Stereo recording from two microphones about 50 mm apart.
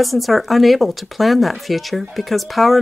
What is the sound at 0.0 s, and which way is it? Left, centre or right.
Speech, centre.